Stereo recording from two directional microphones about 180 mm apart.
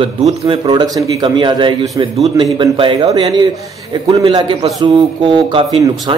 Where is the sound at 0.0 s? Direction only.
30° right (ahead or behind).